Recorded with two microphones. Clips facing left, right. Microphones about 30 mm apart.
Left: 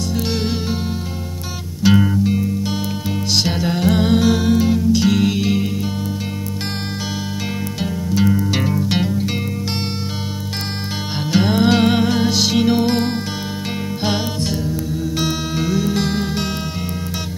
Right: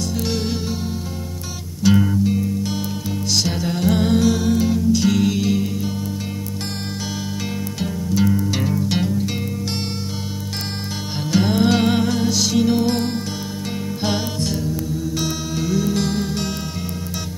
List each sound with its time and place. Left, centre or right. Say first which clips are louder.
1.8 s music: left 2 dB; left
7.8 s music: left 1 dB; centre
11.3 s music: left 2 dB; left
15.1 s music: left 5 dB; left